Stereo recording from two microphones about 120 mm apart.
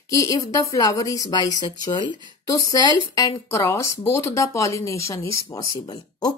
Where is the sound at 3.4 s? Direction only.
20° left (ahead or behind).